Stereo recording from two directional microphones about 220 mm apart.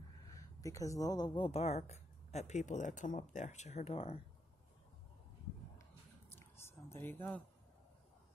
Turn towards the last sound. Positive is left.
turn(degrees=10)  # may be behind; listen again after turning